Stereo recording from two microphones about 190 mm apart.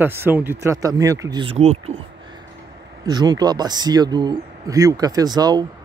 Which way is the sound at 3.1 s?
20° right (ahead or behind).